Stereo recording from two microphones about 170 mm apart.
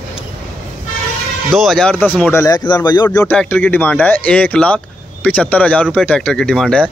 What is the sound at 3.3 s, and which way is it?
Speech, 5° left (ahead or behind).